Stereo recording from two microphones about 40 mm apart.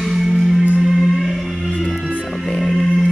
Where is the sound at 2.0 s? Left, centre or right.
Right.